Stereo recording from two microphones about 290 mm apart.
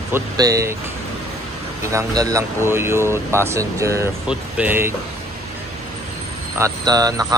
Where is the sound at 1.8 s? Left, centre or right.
Centre.